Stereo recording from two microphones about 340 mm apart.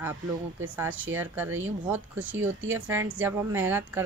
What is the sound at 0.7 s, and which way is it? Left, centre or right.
A woman's voice, centre.